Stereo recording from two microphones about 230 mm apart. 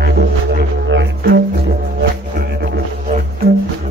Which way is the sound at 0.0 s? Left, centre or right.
Right.